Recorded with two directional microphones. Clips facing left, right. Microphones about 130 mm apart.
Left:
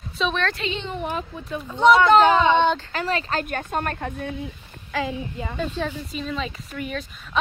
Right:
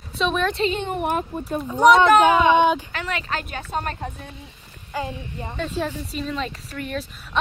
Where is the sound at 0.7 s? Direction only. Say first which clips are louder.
Right 4 dB; 55° right (ahead or behind).